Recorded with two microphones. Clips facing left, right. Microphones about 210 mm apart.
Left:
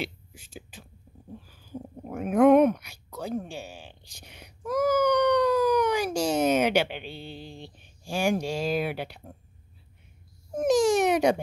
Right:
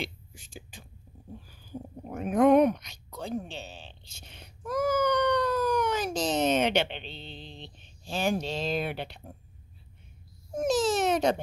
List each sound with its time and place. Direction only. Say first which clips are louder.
0.0 s whispering: left 3 dB; 5° left (ahead or behind)
1.4 s speech: left 1 dB; centre (ahead or behind)
10.6 s a sound: left 4 dB; 15° left (ahead or behind)